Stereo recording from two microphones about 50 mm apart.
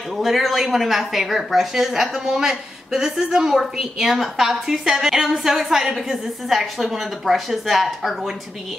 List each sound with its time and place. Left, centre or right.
0.2 s a woman's voice: centre